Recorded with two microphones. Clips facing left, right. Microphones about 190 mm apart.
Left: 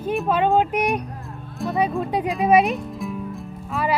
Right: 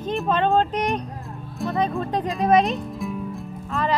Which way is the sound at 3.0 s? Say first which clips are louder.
Even; centre (ahead or behind).